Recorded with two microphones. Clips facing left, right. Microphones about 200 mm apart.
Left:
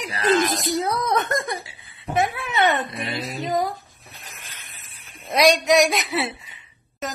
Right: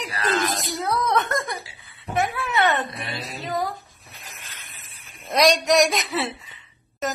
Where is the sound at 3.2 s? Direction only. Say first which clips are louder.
Left 6 dB; 15° left (ahead or behind).